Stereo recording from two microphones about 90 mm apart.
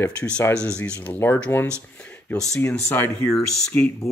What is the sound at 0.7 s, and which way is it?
Speech, 15° left (ahead or behind).